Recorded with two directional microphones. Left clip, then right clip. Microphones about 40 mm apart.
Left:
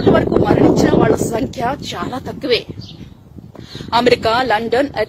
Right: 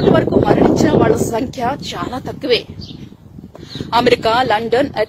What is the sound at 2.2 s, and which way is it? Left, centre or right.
Speech, left.